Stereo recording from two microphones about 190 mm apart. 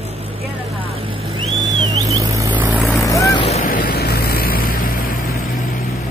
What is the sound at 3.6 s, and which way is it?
Vehicle, 50° left (ahead or behind).